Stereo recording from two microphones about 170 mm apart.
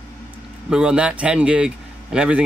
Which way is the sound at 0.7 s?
5° right (ahead or behind).